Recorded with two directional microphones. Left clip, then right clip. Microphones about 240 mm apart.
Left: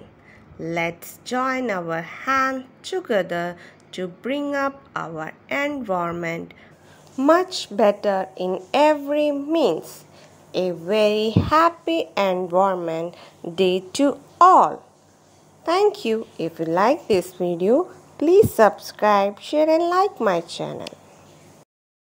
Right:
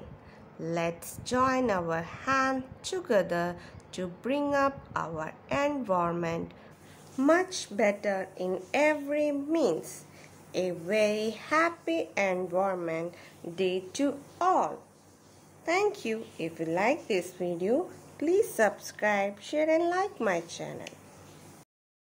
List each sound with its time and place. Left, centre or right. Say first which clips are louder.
0.6 s a woman's voice: left 7 dB; centre